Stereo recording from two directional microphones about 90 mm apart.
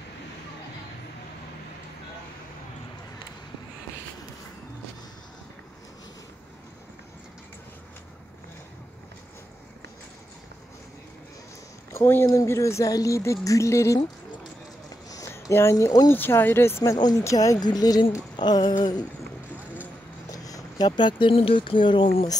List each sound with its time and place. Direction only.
11.9 s speech: 25° left (ahead or behind)
15.0 s speech: 35° left (ahead or behind)
16.9 s speech: 40° left (ahead or behind)
18.3 s a sound: 55° left (ahead or behind)
20.2 s speech: 40° left (ahead or behind); by 22.1 s 65° left (ahead or behind)